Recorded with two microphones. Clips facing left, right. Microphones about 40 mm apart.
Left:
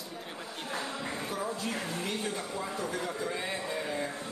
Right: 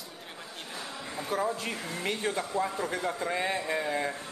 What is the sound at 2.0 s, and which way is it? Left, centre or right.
Speech, right.